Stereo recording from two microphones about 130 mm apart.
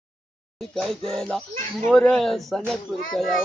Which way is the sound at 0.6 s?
Centre (ahead or behind).